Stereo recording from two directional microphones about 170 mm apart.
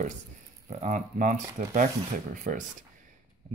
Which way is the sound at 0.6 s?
45° right (ahead or behind).